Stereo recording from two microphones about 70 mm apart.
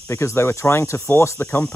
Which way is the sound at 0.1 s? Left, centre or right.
Left.